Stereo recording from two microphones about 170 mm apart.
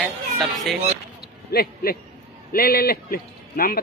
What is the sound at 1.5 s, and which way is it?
A man's voice, 65° left (ahead or behind).